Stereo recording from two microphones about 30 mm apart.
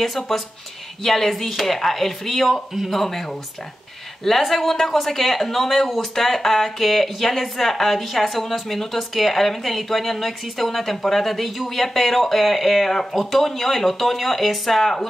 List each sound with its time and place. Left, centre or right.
0.0 s speech: centre
4.2 s speech: centre
14.8 s speech: centre